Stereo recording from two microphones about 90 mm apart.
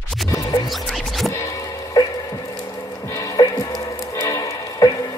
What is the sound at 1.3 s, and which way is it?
Music, 40° left (ahead or behind).